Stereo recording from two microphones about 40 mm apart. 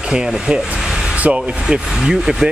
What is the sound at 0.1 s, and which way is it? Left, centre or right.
Speech, centre.